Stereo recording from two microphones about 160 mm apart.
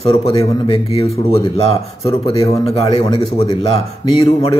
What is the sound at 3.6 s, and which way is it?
Speech, 40° left (ahead or behind).